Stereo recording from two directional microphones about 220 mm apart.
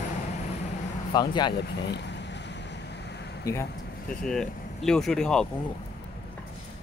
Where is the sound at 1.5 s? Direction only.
50° left (ahead or behind).